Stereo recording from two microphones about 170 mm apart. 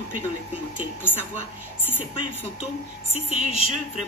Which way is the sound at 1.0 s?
15° left (ahead or behind).